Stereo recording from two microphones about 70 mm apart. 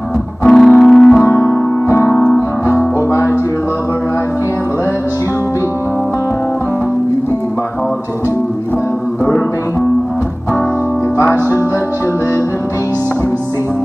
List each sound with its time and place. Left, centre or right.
0.5 s music: centre
1.2 s music: left